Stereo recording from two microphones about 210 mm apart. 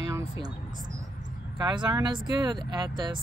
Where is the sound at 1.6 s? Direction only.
20° right (ahead or behind).